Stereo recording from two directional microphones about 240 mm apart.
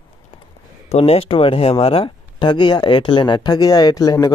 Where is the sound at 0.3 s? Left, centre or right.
Left.